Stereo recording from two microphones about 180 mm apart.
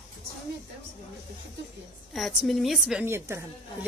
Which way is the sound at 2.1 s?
Centre (ahead or behind).